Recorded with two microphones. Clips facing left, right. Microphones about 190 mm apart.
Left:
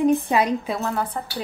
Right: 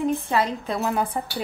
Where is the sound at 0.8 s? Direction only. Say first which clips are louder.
Right 1 dB; 15° right (ahead or behind).